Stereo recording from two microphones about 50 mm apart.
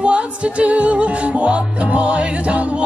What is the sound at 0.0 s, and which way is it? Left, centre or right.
Music, right.